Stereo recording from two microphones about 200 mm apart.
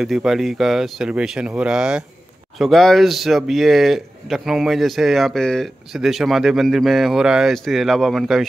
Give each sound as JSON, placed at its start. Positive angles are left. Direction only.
{"t": 0.0, "sound": "speech", "side_deg": 0}